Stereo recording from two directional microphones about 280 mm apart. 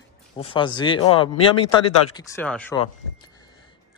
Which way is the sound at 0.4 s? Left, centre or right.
Centre.